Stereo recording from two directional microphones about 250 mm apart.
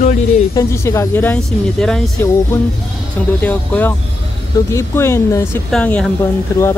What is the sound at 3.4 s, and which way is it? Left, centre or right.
Speech, centre.